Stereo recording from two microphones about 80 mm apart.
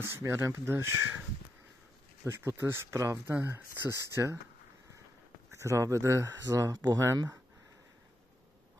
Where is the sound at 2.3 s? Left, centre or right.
Right.